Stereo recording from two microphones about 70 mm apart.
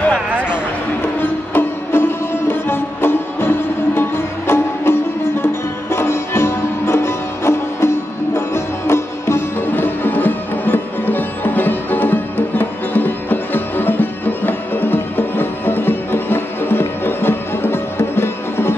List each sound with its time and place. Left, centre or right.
1.2 s music: left
8.4 s sitar: left